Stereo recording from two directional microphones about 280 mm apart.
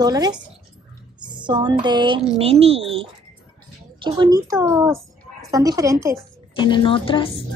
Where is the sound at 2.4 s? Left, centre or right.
Right.